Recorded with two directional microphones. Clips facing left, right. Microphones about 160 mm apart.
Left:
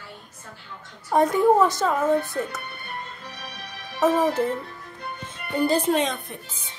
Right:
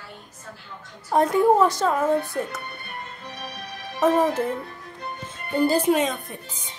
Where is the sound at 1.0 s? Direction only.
5° right (ahead or behind).